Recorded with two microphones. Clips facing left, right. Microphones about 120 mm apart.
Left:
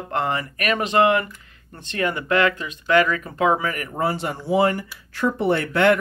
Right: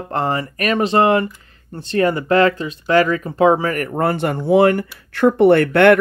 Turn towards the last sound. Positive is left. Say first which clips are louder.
# right 7 dB
turn(degrees=-60)  # may be behind; listen again after turning